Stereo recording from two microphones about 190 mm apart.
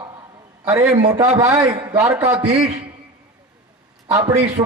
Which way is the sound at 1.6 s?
5° right (ahead or behind).